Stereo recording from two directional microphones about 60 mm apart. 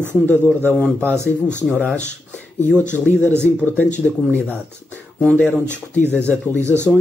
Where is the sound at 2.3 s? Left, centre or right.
Centre.